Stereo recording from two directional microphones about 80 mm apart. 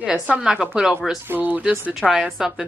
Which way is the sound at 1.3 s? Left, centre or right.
Right.